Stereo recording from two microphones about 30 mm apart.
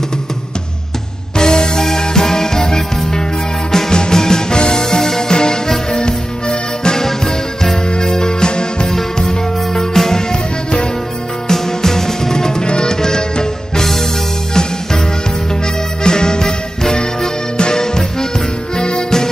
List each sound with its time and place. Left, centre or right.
1.3 s music: left
7.1 s music: centre
7.9 s music: left
8.8 s music: centre
11.4 s music: centre
16.0 s music: left